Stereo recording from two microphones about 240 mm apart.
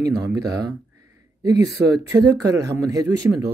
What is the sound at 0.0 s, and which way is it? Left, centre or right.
Speech, centre.